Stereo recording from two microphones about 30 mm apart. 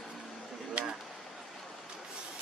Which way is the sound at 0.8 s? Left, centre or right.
Right.